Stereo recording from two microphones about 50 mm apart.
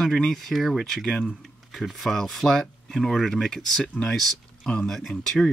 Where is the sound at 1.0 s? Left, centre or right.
Centre.